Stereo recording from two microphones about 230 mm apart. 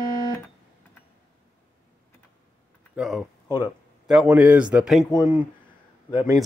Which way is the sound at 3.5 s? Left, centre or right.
Centre.